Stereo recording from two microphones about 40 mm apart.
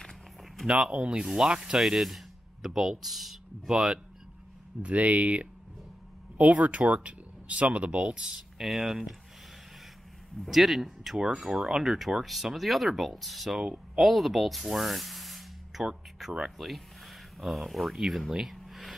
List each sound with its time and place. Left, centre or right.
0.7 s speech: right
1.2 s speech: centre
1.8 s speech: centre
4.8 s speech: right
8.8 s speech: centre
10.5 s speech: centre
11.1 s speech: centre
11.8 s speech: centre
16.5 s speech: centre
18.4 s a sound: centre